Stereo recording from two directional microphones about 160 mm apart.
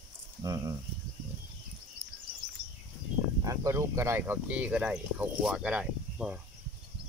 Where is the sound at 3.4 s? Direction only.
20° right (ahead or behind).